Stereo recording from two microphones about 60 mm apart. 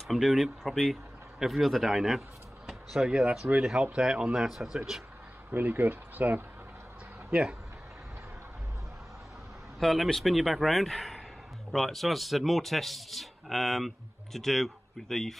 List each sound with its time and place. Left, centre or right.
0.1 s speech: centre
3.1 s speech: centre
5.5 s speech: right
7.2 s speech: centre
9.8 s speech: centre